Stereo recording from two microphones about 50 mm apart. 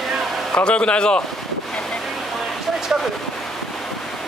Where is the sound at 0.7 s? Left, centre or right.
Left.